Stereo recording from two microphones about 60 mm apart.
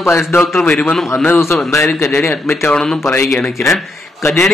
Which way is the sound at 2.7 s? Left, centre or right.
Centre.